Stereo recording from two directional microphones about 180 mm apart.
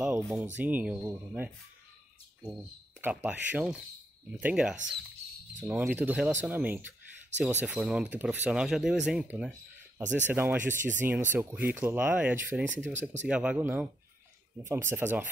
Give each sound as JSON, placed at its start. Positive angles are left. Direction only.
{"t": 0.0, "sound": "speech", "side_deg": -10}
{"t": 3.0, "sound": "speech", "side_deg": -10}
{"t": 10.7, "sound": "speech", "side_deg": -45}
{"t": 11.3, "sound": "speech", "side_deg": -10}